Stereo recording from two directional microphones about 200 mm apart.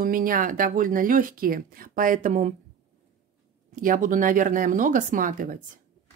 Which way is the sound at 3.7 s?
40° right (ahead or behind).